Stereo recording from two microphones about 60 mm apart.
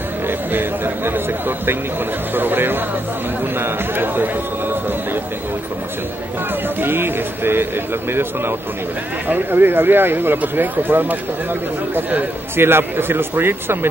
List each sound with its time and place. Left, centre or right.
0.3 s a man's voice: right
2.3 s speech: right
6.8 s speech: right